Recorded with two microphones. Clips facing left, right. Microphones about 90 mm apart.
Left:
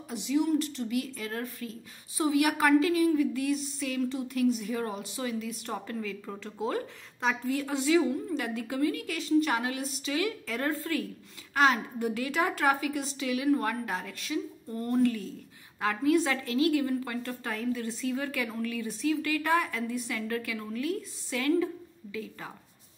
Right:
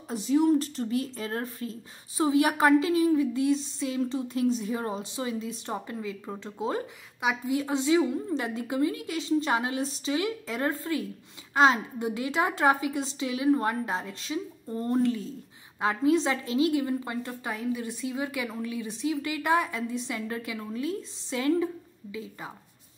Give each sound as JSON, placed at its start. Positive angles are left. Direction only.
{"t": 0.1, "sound": "a woman's voice", "side_deg": -35}